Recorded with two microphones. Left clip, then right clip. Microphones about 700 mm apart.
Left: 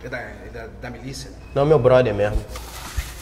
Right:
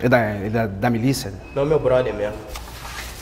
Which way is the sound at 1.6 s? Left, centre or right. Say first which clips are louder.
Left 3 dB; left.